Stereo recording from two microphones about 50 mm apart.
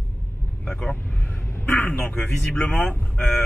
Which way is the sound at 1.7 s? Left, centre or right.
Left.